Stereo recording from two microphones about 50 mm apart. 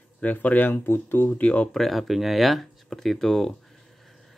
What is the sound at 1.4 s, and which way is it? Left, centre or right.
Speech, left.